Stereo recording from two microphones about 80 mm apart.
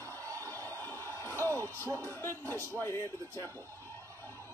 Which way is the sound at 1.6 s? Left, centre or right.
Left.